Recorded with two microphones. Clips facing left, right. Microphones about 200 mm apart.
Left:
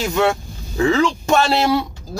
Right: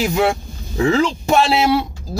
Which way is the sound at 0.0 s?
5° right (ahead or behind).